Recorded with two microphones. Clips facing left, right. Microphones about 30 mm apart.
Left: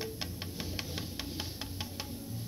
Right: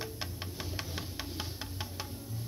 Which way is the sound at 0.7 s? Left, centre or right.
Left.